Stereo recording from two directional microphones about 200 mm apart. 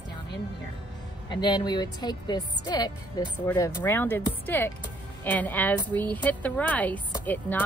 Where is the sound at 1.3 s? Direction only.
20° left (ahead or behind).